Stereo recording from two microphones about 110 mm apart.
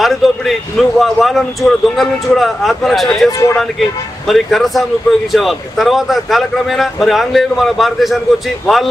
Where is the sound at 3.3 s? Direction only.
25° left (ahead or behind).